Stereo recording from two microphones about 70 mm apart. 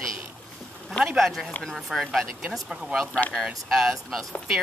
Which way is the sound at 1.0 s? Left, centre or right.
Centre.